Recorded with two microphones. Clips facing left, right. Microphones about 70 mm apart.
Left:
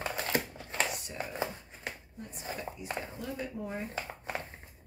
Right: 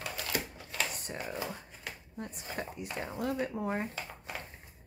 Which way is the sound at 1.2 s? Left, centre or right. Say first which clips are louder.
Left 2 dB; left.